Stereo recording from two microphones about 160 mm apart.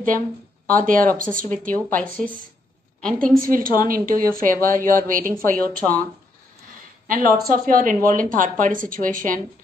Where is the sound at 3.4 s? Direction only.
60° right (ahead or behind).